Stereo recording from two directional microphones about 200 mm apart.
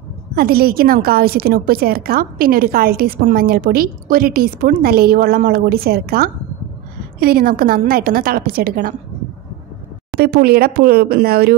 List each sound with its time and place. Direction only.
0.4 s a woman's voice: 50° right (ahead or behind)
10.1 s a woman's voice: 50° right (ahead or behind)